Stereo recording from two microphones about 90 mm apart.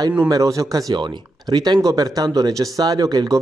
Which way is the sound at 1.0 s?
55° right (ahead or behind).